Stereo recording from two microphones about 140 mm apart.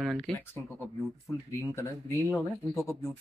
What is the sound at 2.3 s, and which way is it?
Speech, 20° left (ahead or behind).